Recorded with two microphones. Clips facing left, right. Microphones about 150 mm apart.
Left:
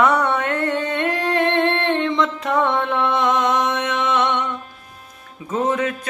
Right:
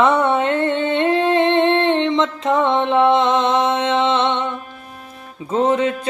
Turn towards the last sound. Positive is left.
turn(degrees=-25)  # may be behind; listen again after turning